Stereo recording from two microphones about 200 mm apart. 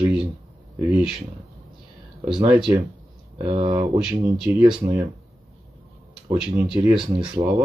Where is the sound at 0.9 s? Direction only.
5° right (ahead or behind).